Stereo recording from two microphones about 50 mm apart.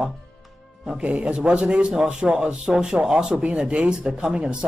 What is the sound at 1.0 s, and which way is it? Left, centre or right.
Speech, right.